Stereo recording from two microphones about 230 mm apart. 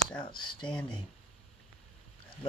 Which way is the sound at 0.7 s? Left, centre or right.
Centre.